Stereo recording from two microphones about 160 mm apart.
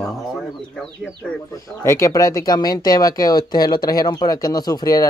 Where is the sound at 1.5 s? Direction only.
20° left (ahead or behind).